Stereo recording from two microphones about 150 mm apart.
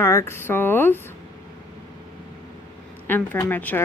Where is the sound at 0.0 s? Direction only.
15° left (ahead or behind).